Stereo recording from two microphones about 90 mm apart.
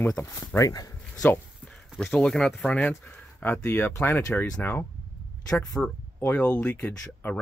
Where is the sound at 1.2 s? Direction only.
10° left (ahead or behind).